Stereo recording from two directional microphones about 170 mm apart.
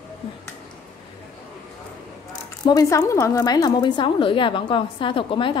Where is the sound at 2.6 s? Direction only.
20° left (ahead or behind).